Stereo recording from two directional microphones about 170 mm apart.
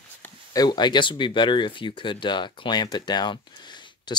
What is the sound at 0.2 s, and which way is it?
Speech, 20° left (ahead or behind).